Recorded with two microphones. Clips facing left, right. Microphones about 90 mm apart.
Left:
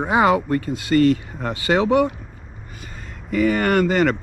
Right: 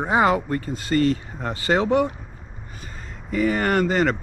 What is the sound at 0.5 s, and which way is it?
Speech, 40° right (ahead or behind).